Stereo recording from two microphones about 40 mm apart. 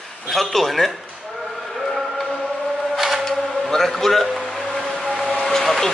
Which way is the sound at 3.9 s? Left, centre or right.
Centre.